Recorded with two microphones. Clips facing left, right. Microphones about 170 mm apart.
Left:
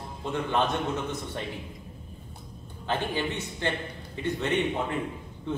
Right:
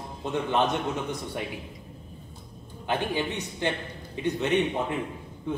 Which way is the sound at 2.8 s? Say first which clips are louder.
Right 1 dB; 15° right (ahead or behind).